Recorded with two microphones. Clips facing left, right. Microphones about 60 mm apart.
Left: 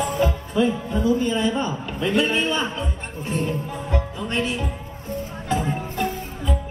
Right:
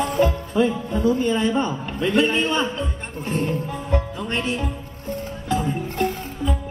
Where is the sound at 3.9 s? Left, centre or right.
Right.